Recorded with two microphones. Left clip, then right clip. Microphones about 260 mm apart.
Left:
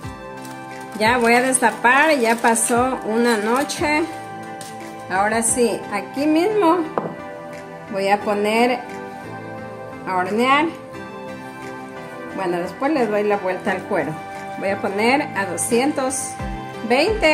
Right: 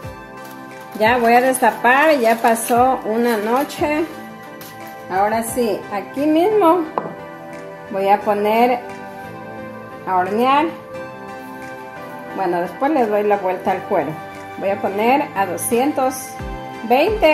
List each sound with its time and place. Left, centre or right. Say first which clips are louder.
0.9 s speech: right 2 dB; left
5.1 s speech: right 1 dB; left; by 8.7 s centre
10.1 s speech: right 2 dB; centre
12.8 s speech: right 2 dB; centre